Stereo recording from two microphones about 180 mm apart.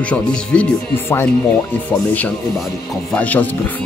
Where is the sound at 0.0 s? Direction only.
5° left (ahead or behind).